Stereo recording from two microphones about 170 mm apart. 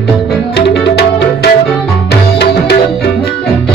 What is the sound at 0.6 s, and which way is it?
Music, 80° left.